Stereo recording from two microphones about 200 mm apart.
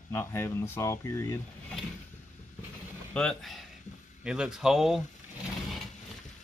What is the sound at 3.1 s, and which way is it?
Speech, centre (ahead or behind).